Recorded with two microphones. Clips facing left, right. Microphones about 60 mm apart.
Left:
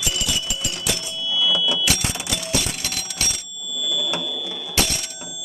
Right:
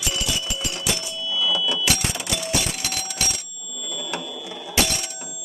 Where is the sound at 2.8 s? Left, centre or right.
Right.